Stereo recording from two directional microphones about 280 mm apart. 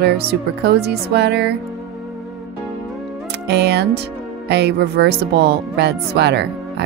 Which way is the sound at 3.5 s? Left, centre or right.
Right.